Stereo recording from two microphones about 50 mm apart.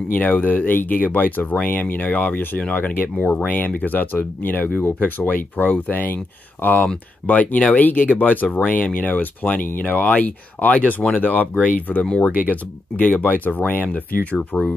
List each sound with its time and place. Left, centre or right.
0.1 s speech: left